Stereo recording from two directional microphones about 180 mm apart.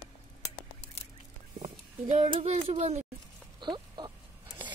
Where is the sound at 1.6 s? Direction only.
35° right (ahead or behind).